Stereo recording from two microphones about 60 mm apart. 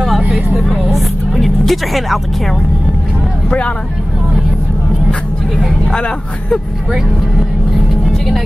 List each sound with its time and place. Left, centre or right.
0.7 s vehicle: centre
3.4 s speech: centre
5.9 s speech: centre